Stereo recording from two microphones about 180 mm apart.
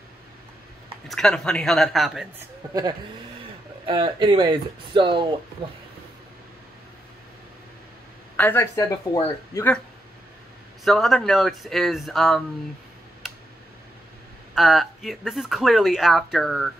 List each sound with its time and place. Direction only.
1.0 s speech: 5° left (ahead or behind)
2.3 s speech: 20° right (ahead or behind)
8.4 s speech: 10° left (ahead or behind)
10.8 s speech: centre (ahead or behind)
13.2 s tick: centre (ahead or behind)
14.5 s speech: centre (ahead or behind)